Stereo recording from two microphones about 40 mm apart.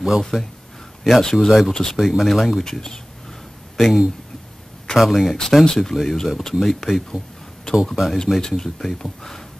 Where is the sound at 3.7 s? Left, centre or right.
Centre.